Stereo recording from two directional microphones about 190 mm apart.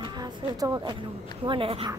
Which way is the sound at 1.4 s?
30° right (ahead or behind).